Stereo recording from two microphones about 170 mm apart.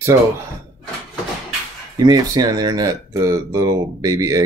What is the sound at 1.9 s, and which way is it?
Speech, 20° right (ahead or behind).